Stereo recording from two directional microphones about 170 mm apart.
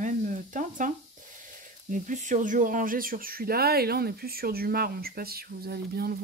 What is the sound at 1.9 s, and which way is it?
Speech, 50° right (ahead or behind).